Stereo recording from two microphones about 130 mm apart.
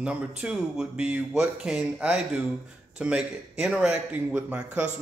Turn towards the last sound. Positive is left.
turn(degrees=-10)  # may be behind; listen again after turning